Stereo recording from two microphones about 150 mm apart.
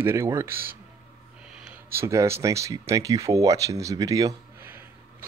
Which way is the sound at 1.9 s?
20° right (ahead or behind).